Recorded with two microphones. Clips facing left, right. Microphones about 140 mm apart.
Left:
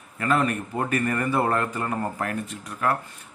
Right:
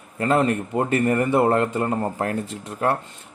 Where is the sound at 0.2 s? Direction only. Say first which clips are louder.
Right 4 dB; 25° right (ahead or behind).